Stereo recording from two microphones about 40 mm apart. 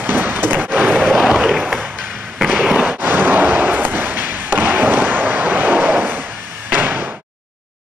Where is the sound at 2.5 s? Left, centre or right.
Right.